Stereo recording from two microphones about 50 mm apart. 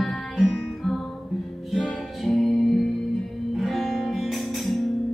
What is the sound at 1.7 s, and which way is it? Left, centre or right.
Music, centre.